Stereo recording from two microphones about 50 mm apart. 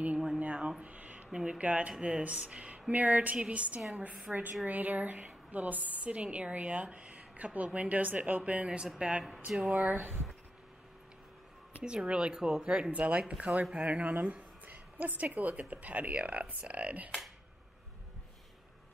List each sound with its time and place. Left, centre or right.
0.4 s a sound: right
1.3 s speech: centre
1.6 s a woman's voice: right
9.6 s a woman's voice: right
11.8 s speech: right
12.9 s a woman's voice: right